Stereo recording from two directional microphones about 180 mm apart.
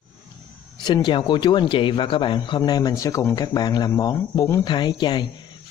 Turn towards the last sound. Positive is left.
turn(degrees=25)  # may be behind; listen again after turning